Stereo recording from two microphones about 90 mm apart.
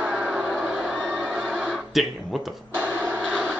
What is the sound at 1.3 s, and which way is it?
Neigh, 5° right (ahead or behind).